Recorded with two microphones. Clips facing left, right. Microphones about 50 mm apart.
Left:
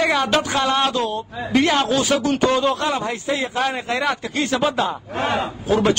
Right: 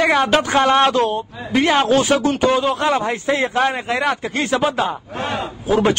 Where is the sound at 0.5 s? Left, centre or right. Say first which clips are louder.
Right 5 dB; right.